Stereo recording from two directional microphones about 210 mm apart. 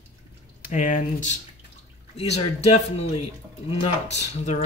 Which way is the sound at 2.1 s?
30° left (ahead or behind).